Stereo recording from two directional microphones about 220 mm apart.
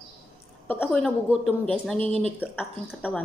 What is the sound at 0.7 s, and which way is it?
A woman's voice, 10° left (ahead or behind).